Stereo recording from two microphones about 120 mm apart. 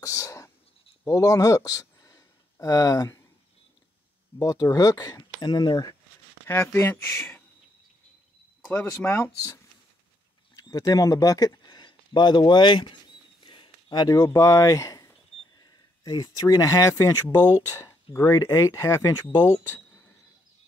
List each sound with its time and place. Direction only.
0.0 s whispering: 25° left (ahead or behind)
1.0 s speech: 30° left (ahead or behind)
4.4 s speech: 30° left (ahead or behind)
6.4 s speech: 20° left (ahead or behind)
8.9 s speech: 20° left (ahead or behind); by 12.9 s 40° left (ahead or behind)
13.4 s a sound: 40° left (ahead or behind); by 15.1 s 25° left (ahead or behind)
15.6 s speech: 35° left (ahead or behind)